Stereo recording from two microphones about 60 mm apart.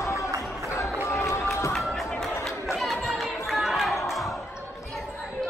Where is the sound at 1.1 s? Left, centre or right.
Left.